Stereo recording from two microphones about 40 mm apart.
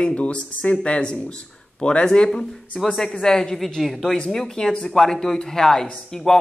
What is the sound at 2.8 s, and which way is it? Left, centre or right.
Speech, centre.